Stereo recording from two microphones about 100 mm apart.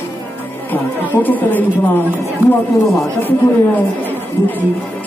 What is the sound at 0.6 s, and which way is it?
Chatter, 20° left (ahead or behind).